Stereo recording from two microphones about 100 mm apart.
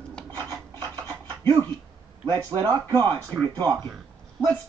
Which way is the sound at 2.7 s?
40° right (ahead or behind).